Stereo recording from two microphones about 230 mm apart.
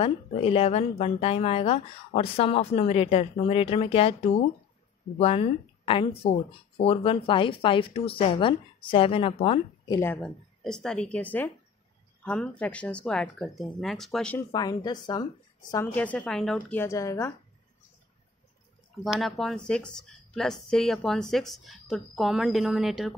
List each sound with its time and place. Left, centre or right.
0.0 s speech: left
9.9 s a woman's voice: centre
14.5 s a woman's voice: centre
19.1 s a woman's voice: centre